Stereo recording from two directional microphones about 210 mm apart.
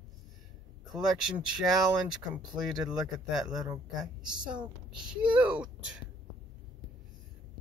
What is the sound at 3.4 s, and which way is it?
Speech, 15° right (ahead or behind).